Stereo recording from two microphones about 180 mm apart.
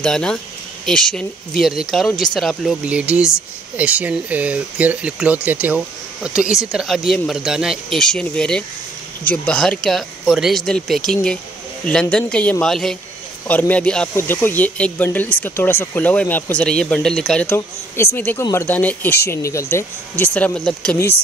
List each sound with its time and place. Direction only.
0.0 s speech: 5° left (ahead or behind)